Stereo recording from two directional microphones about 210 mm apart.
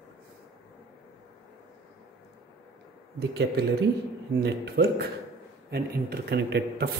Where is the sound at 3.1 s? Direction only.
50° right (ahead or behind).